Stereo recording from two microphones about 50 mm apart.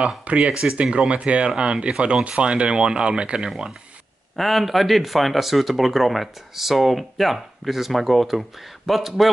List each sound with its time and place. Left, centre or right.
0.2 s speech: right
0.5 s speech: centre
4.4 s speech: centre